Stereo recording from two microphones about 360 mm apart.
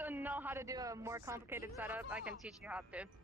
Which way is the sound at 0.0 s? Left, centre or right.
Centre.